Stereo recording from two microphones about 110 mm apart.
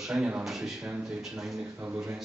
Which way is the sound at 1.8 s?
20° right (ahead or behind).